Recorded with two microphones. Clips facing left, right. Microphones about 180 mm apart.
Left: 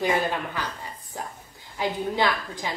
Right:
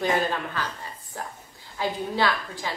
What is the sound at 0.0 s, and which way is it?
A woman's voice, 15° left (ahead or behind).